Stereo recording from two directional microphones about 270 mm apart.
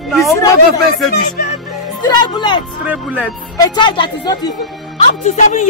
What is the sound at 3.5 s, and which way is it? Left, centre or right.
A woman's voice, centre.